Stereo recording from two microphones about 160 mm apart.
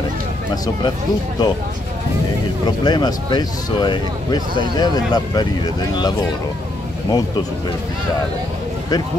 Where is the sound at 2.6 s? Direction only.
25° left (ahead or behind).